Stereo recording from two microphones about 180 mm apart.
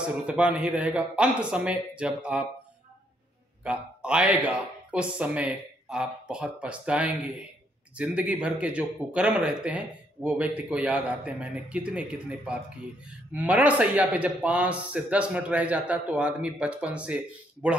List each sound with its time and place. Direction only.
0.0 s a man's voice: 5° right (ahead or behind)
3.6 s a man's voice: 5° right (ahead or behind)